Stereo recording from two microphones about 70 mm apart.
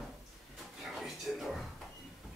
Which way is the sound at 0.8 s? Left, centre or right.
Centre.